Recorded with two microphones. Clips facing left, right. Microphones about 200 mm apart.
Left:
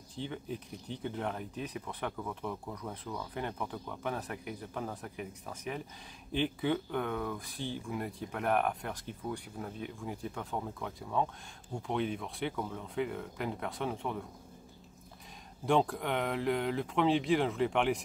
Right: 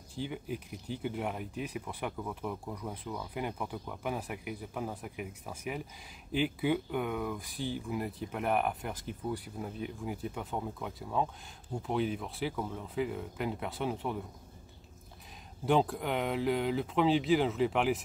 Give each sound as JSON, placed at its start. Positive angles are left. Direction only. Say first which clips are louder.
{"t": 0.1, "sound": "speech", "louder": "right 2 dB", "side_deg": -10}
{"t": 15.6, "sound": "speech", "louder": "right 1 dB", "side_deg": 0}